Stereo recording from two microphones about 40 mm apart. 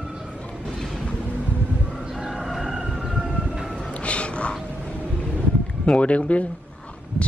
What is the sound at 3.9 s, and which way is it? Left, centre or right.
Music, left.